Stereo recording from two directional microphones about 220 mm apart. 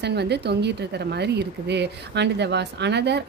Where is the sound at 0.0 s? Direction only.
50° right (ahead or behind).